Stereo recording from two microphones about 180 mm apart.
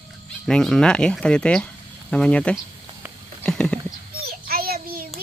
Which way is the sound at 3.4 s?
5° left (ahead or behind).